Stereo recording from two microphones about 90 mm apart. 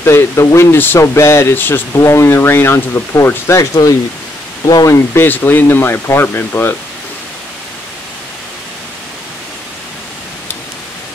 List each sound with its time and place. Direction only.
0.0 s speech: 30° left (ahead or behind)